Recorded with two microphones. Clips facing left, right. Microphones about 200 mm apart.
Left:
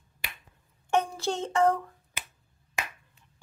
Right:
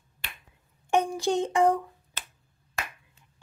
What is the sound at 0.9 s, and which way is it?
Female singing, 15° right (ahead or behind).